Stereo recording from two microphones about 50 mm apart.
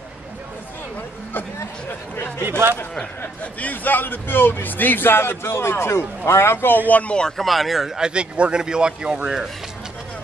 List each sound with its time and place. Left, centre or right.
3.6 s a man's voice: left
6.9 s speech: left
7.2 s speech: centre
8.1 s speech: right